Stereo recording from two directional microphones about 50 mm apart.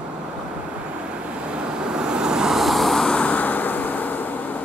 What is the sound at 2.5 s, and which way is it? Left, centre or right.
Vehicle, centre.